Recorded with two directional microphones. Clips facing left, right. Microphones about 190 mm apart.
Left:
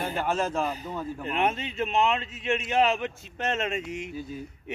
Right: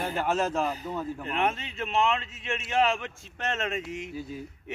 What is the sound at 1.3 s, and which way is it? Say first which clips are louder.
Speech: left 3 dB; 20° left (ahead or behind).